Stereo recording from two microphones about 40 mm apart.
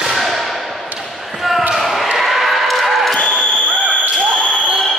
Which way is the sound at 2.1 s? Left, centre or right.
Centre.